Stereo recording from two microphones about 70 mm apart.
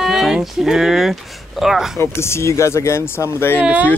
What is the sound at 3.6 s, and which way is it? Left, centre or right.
Speech, right.